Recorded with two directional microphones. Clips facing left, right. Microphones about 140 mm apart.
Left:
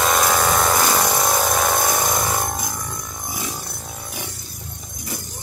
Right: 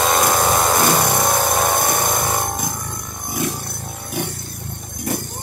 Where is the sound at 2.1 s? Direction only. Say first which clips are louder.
Right 1 dB; 55° right (ahead or behind).